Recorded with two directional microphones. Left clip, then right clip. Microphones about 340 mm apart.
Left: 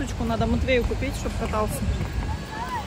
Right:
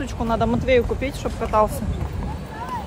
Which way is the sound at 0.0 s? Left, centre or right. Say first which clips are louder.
Right 5 dB; centre.